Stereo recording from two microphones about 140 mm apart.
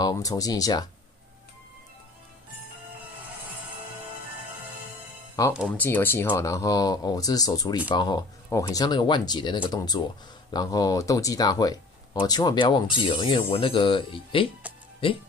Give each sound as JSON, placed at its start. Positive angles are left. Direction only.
{"t": 0.0, "sound": "speech", "side_deg": 25}
{"t": 5.4, "sound": "speech", "side_deg": 25}